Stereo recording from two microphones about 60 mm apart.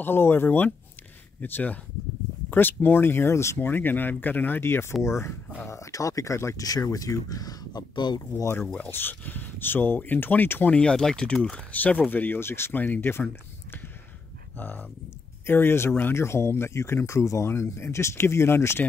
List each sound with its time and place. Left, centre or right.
0.0 s speech: left
5.7 s speech: left
6.6 s speech: left
8.9 s speech: left
10.7 s speech: centre
11.7 s speech: left
17.5 s speech: left